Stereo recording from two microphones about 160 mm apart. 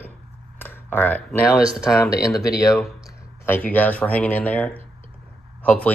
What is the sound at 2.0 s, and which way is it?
Speech, 20° left (ahead or behind).